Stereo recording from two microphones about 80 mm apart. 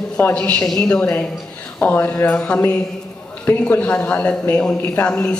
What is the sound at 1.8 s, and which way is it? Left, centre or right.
Speech, left.